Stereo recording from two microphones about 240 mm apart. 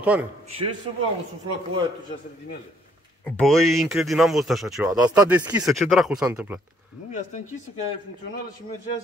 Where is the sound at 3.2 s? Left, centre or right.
Centre.